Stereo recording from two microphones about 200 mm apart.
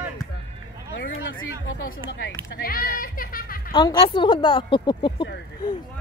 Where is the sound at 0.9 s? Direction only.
65° left (ahead or behind).